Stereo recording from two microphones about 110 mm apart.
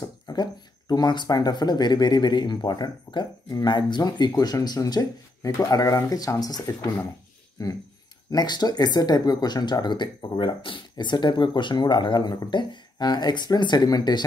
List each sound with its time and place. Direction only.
0.0 s speech: 35° left (ahead or behind)